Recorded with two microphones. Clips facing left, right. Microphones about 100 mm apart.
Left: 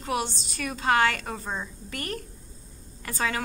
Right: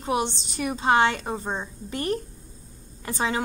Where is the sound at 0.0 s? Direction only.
25° right (ahead or behind).